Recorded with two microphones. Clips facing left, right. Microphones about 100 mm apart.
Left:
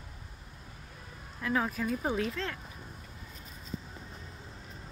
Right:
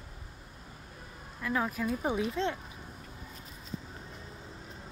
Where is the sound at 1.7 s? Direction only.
10° right (ahead or behind).